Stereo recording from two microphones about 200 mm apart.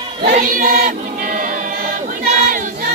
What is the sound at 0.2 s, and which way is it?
Choir, 45° right (ahead or behind).